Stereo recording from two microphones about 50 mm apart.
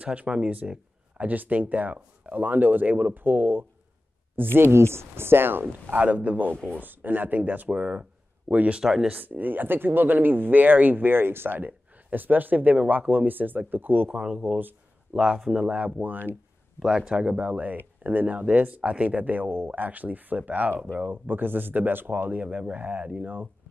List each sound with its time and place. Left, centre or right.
0.0 s speech: right
4.6 s speech: right
14.1 s speech: right
14.4 s speech: right
15.1 s speech: centre
15.5 s speech: right
16.0 s speech: right
16.8 s speech: centre
17.5 s speech: right
19.5 s speech: right
19.8 s speech: right
22.4 s speech: right